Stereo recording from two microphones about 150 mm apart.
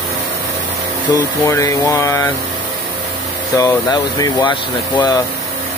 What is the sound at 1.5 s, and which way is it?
Speech, 20° left (ahead or behind).